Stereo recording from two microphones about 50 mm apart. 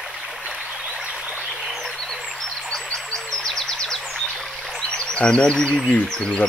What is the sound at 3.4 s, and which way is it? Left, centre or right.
Bird vocalization, centre.